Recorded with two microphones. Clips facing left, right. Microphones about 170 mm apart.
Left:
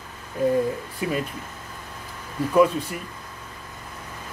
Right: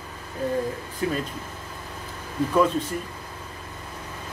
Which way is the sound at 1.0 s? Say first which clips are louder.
Right 1 dB; 15° left (ahead or behind).